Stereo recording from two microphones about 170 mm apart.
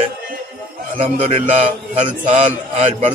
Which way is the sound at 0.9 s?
35° right (ahead or behind).